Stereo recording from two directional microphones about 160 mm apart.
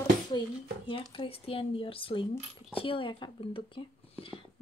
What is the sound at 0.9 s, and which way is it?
Speech, 35° left (ahead or behind).